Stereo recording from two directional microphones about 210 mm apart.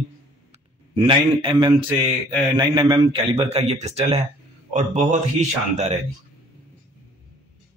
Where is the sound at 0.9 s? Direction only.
25° right (ahead or behind).